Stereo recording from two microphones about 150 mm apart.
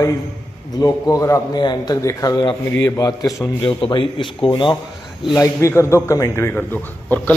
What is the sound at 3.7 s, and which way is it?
Speech, 35° left (ahead or behind).